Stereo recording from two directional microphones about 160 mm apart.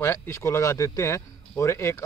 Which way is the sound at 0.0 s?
15° left (ahead or behind).